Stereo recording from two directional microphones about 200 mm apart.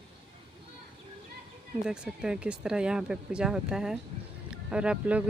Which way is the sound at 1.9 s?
5° right (ahead or behind).